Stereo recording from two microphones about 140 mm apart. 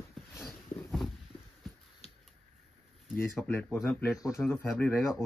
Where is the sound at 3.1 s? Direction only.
15° left (ahead or behind).